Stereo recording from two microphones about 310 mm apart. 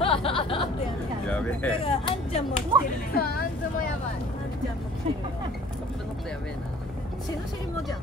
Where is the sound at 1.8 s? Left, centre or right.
Centre.